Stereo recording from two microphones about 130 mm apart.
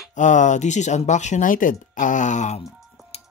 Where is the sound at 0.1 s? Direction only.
70° left (ahead or behind).